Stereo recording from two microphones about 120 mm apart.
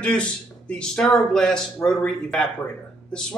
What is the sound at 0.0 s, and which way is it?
Speech, 10° left (ahead or behind).